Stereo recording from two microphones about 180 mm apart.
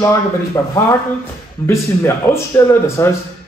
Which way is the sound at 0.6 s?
15° left (ahead or behind).